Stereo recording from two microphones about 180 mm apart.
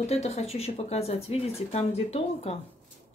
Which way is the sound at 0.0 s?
35° left (ahead or behind).